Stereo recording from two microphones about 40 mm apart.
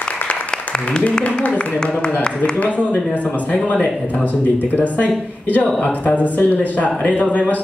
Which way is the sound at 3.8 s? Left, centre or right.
Left.